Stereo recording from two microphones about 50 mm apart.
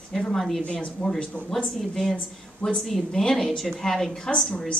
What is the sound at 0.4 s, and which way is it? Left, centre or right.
Speech, centre.